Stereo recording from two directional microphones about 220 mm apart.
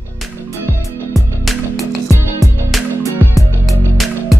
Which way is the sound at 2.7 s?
Centre (ahead or behind).